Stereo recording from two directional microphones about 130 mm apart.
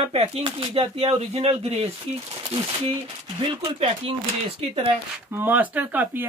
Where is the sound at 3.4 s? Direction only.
40° right (ahead or behind).